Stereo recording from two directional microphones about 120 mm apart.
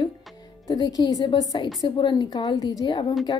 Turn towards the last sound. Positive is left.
turn(degrees=40)  # may be behind; listen again after turning